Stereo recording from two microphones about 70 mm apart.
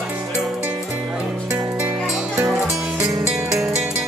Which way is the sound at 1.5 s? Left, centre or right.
Centre.